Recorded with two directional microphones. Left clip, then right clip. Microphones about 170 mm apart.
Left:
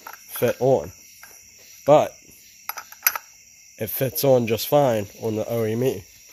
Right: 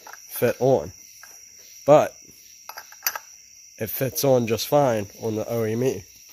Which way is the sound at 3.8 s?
Centre (ahead or behind).